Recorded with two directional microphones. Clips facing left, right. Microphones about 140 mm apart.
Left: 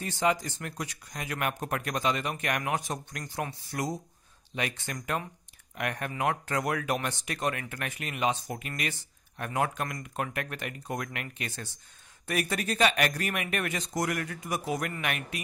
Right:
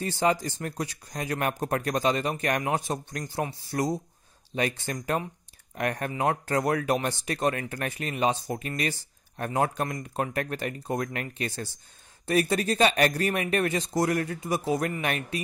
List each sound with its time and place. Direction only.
0.0 s speech: 35° right (ahead or behind)